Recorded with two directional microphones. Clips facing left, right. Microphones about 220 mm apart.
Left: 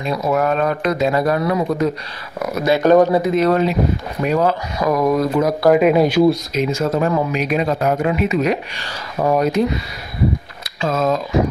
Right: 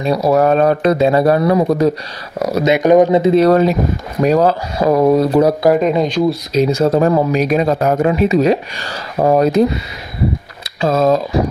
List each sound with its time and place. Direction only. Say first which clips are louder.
0.0 s a man's voice: right 6 dB; 35° right (ahead or behind)
5.8 s speech: left 1 dB; 5° left (ahead or behind)
6.5 s a man's voice: right 6 dB; 35° right (ahead or behind)
10.8 s a man's voice: right 5 dB; 35° right (ahead or behind)